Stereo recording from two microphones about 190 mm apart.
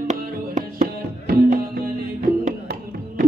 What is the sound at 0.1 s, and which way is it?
Music, 45° right (ahead or behind).